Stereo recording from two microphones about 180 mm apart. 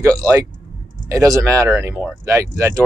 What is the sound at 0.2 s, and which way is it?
A man's voice, 20° right (ahead or behind).